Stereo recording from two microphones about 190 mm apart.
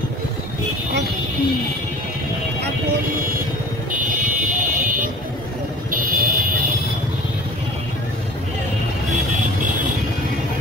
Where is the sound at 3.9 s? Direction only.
45° right (ahead or behind).